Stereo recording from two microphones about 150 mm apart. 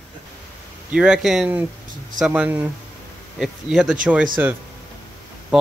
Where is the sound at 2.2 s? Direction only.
10° right (ahead or behind).